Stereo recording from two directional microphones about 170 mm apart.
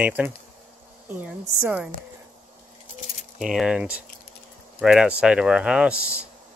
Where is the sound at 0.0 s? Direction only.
10° right (ahead or behind).